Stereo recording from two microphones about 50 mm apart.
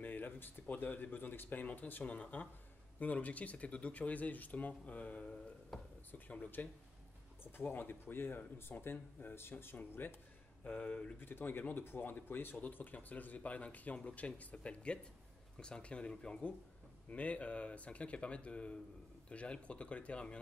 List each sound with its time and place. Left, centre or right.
0.0 s speech: left
6.6 s speech: left
10.6 s speech: left
11.1 s speech: left
12.5 s speech: left